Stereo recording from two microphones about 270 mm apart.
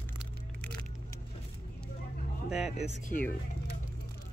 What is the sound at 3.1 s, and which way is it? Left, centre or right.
Speech, left.